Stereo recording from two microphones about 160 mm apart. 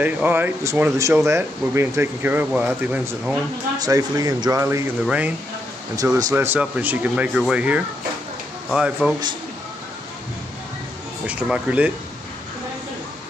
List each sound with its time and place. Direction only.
0.0 s speech: 10° right (ahead or behind)
3.7 s speech: 25° right (ahead or behind); by 5.3 s 10° right (ahead or behind)
5.9 s speech: 20° right (ahead or behind); by 9.1 s 5° right (ahead or behind)
11.2 s speech: 5° right (ahead or behind)